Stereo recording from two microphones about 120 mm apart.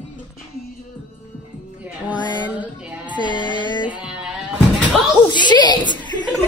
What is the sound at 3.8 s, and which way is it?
Music, 10° right (ahead or behind).